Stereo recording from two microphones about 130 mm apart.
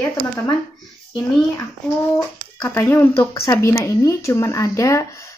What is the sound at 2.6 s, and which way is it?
Speech, 15° left (ahead or behind).